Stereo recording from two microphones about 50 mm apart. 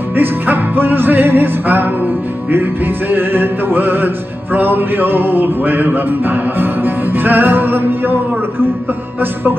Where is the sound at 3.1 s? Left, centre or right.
Right.